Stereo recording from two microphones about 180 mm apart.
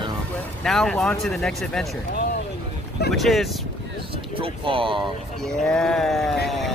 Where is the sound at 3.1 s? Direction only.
Centre (ahead or behind).